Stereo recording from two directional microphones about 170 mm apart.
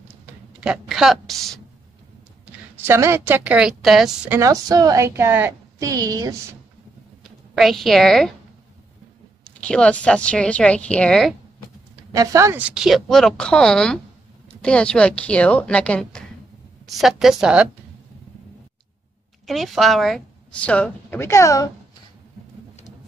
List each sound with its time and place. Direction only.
0.3 s speech: 5° right (ahead or behind)
2.8 s a woman's voice: 15° right (ahead or behind)
4.4 s a woman's voice: 20° right (ahead or behind)
7.5 s speech: centre (ahead or behind)
9.4 s a woman's voice: 5° left (ahead or behind)
12.1 s a woman's voice: 20° right (ahead or behind)
19.4 s a woman's voice: centre (ahead or behind); by 21.6 s 20° left (ahead or behind)